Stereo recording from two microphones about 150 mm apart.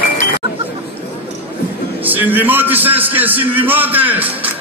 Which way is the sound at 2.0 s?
10° right (ahead or behind).